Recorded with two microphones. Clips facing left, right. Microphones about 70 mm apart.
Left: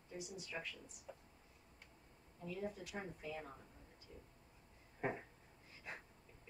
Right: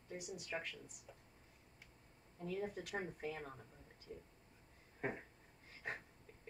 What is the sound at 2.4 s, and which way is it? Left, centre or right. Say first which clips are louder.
Speech: right 2 dB; right.